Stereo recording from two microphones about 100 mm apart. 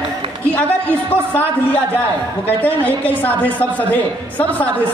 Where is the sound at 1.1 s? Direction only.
20° left (ahead or behind).